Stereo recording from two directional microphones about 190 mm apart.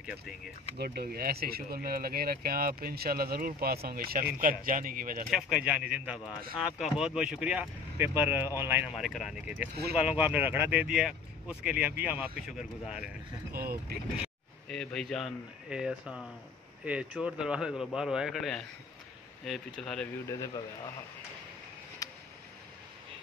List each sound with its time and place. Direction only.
0.7 s speech: 55° right (ahead or behind)
5.3 s a man's voice: 5° right (ahead or behind)
13.5 s speech: 55° right (ahead or behind)
14.1 s a man's voice: centre (ahead or behind)
20.2 s speech: 15° left (ahead or behind)
22.0 s a sound: 20° left (ahead or behind)